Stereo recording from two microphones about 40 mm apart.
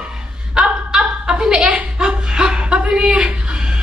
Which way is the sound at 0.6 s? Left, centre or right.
Right.